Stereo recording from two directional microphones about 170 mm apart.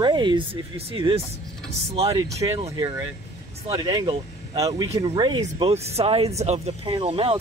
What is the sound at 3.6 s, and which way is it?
Speech, 35° right (ahead or behind).